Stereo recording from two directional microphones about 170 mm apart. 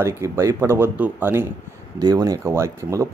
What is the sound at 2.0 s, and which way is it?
Speech, 20° right (ahead or behind).